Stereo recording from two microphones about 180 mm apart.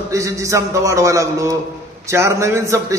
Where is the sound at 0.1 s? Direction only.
15° right (ahead or behind).